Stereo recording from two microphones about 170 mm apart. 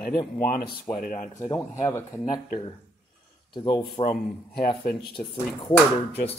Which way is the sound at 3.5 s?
30° left (ahead or behind).